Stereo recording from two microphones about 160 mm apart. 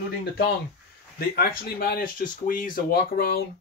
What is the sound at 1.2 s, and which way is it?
Speech, 70° left (ahead or behind).